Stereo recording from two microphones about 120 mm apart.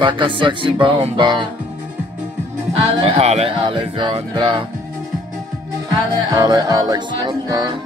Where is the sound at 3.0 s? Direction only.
60° right (ahead or behind).